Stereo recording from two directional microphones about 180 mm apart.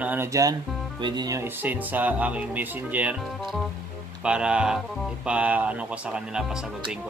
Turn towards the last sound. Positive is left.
turn(degrees=-5)  # may be behind; listen again after turning